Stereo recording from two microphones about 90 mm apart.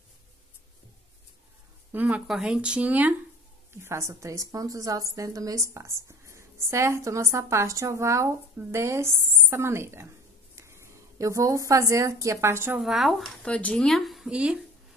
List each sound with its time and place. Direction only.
1.9 s speech: 15° right (ahead or behind)
3.8 s a woman's voice: 30° right (ahead or behind)
12.8 s a woman's voice: centre (ahead or behind)
14.3 s speech: 10° right (ahead or behind)